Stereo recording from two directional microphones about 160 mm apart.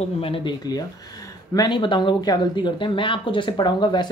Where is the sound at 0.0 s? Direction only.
35° left (ahead or behind).